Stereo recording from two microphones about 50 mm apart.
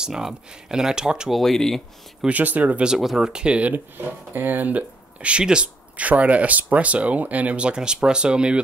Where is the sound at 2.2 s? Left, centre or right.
Right.